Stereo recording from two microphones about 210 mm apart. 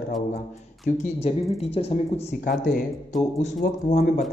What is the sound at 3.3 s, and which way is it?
Speech, 35° left (ahead or behind).